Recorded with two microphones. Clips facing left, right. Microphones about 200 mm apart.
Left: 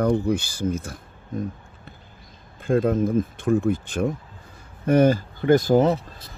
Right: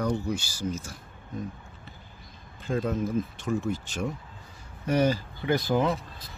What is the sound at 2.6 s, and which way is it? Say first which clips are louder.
Speech: left 8 dB; 55° left (ahead or behind).